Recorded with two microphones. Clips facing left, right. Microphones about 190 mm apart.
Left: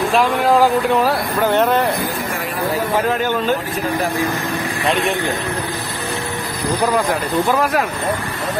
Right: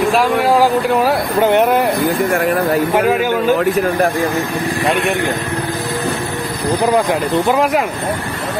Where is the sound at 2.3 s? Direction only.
55° right (ahead or behind).